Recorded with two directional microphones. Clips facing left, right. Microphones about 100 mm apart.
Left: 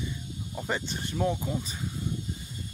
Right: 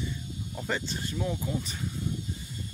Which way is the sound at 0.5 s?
20° left (ahead or behind).